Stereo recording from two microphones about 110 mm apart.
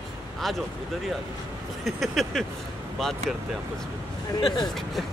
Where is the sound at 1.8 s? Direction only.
Centre (ahead or behind).